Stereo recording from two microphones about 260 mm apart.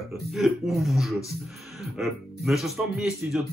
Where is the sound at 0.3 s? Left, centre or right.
Centre.